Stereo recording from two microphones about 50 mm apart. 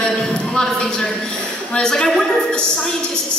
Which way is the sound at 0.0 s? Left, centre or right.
Centre.